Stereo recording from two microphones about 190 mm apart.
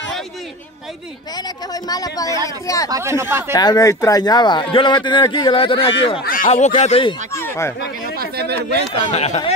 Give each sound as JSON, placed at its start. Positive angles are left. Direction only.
{"t": 1.7, "sound": "a man's voice", "side_deg": 20}
{"t": 2.9, "sound": "speech", "side_deg": -15}
{"t": 3.5, "sound": "a man's voice", "side_deg": 20}
{"t": 6.2, "sound": "speech", "side_deg": 45}
{"t": 7.3, "sound": "a sound", "side_deg": 15}
{"t": 8.2, "sound": "a sound", "side_deg": -60}
{"t": 8.9, "sound": "speech", "side_deg": 35}